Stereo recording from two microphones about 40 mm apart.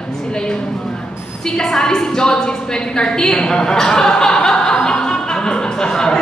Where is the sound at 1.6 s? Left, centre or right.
Centre.